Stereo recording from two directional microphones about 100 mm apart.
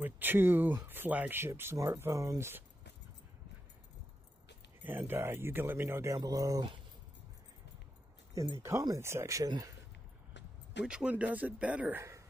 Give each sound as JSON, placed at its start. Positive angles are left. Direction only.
{"t": 0.0, "sound": "speech", "side_deg": -20}
{"t": 4.8, "sound": "speech", "side_deg": -20}
{"t": 6.1, "sound": "speech", "side_deg": -40}
{"t": 8.6, "sound": "speech", "side_deg": -30}
{"t": 10.9, "sound": "speech", "side_deg": -10}